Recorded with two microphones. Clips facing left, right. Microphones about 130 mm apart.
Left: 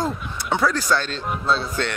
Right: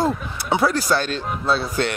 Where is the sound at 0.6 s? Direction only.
35° right (ahead or behind).